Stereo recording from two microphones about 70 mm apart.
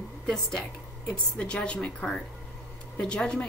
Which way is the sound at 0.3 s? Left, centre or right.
Centre.